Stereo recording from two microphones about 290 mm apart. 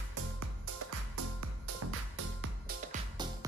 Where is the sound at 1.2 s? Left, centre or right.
Right.